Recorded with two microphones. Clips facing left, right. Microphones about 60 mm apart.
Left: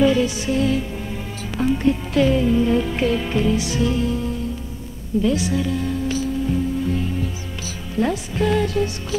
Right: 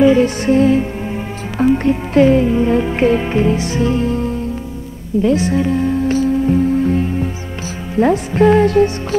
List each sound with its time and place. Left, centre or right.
0.2 s speech: right
5.2 s music: right
8.0 s speech: right
8.6 s music: right